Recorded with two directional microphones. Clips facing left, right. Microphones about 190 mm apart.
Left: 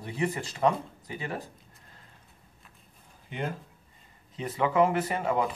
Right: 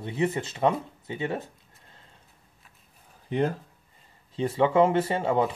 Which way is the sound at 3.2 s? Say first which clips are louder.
Right 8 dB; 35° right (ahead or behind).